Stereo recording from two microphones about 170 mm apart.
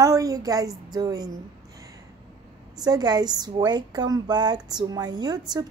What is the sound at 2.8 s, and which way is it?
A woman's voice, 25° right (ahead or behind).